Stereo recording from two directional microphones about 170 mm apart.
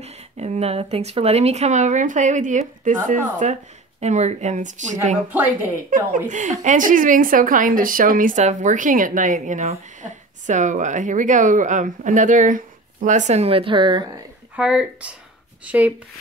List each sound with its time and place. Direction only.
0.0 s speech: 40° right (ahead or behind)
14.5 s speech: 5° right (ahead or behind)